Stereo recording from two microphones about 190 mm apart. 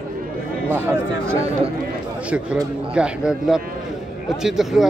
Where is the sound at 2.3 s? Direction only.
5° right (ahead or behind).